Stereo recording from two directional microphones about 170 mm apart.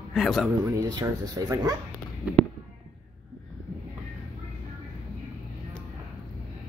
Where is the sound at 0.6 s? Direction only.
20° right (ahead or behind).